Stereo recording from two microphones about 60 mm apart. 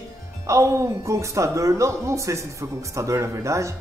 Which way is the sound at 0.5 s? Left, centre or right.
Right.